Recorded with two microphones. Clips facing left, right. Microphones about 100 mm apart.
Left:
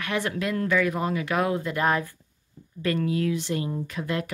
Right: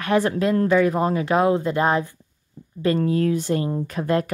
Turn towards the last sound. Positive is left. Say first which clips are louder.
# right 7 dB
turn(degrees=-40)  # may be behind; listen again after turning